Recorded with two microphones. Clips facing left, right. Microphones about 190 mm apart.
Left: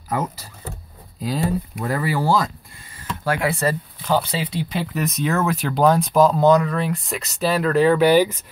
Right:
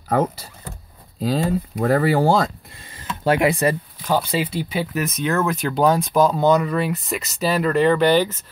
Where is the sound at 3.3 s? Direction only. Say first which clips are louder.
Right 4 dB; 15° right (ahead or behind).